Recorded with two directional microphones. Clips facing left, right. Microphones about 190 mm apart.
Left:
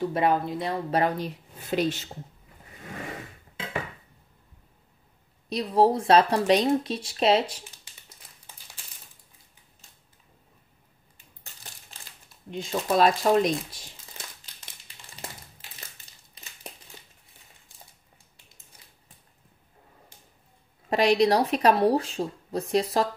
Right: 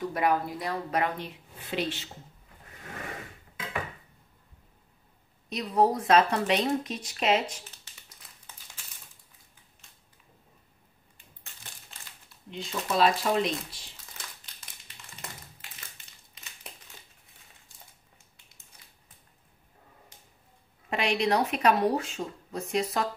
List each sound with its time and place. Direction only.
0.0 s speech: 25° left (ahead or behind); by 2.0 s 45° left (ahead or behind)
5.5 s speech: 30° left (ahead or behind)
12.4 s speech: 45° left (ahead or behind)
20.9 s speech: 35° left (ahead or behind)